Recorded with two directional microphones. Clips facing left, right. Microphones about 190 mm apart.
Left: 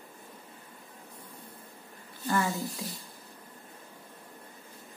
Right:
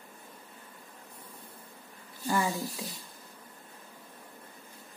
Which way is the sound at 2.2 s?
15° right (ahead or behind).